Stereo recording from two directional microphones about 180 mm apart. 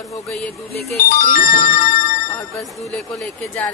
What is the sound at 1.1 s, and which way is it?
Speech, 50° left (ahead or behind).